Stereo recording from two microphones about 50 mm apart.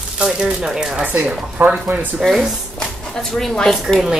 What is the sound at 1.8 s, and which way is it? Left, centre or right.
Speech, right.